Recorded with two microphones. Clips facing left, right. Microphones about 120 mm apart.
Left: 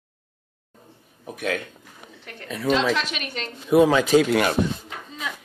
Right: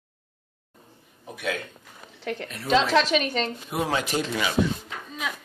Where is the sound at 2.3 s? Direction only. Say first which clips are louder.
Right 12 dB; 90° right.